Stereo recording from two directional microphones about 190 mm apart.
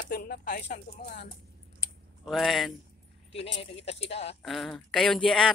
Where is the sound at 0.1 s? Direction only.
50° left (ahead or behind).